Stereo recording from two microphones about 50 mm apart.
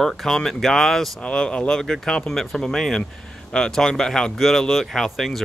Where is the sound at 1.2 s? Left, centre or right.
Left.